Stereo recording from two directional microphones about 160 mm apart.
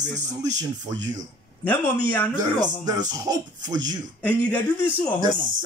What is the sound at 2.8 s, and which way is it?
Speech, 25° right (ahead or behind).